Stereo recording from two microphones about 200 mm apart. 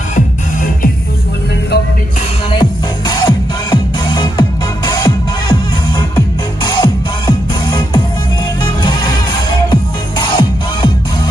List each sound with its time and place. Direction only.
2.5 s music: 20° left (ahead or behind)